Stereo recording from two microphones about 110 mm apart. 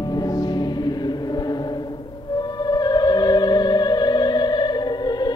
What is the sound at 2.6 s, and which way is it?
Music, 35° left (ahead or behind).